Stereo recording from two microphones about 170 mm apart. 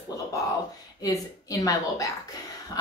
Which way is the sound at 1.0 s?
20° left (ahead or behind).